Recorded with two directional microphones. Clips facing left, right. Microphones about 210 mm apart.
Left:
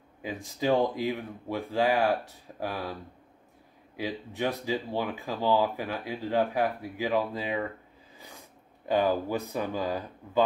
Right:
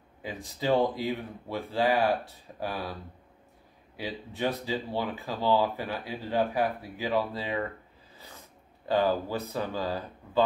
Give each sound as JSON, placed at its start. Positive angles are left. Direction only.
{"t": 0.2, "sound": "speech", "side_deg": 15}